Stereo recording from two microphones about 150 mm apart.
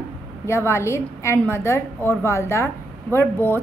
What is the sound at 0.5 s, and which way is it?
A woman's voice, 20° left (ahead or behind).